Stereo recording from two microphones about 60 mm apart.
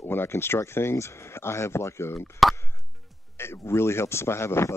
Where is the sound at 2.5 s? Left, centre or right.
Left.